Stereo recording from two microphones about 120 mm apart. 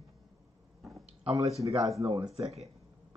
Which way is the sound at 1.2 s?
65° right (ahead or behind).